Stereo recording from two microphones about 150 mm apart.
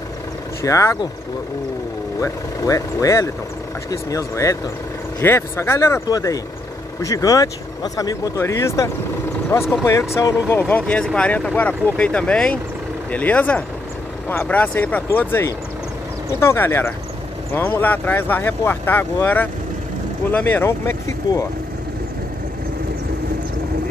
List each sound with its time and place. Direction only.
0.6 s speech: 20° left (ahead or behind)
2.1 s speech: 25° left (ahead or behind)
10.6 s speech: 10° left (ahead or behind)